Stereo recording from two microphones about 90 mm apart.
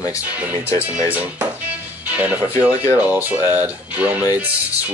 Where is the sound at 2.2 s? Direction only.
20° right (ahead or behind).